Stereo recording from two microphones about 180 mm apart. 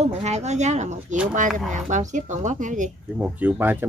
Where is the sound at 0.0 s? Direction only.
40° right (ahead or behind).